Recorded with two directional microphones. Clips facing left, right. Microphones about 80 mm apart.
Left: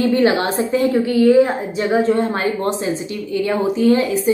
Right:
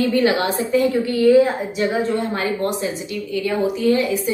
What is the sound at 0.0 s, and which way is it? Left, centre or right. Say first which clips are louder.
A woman's voice: left 2 dB; left.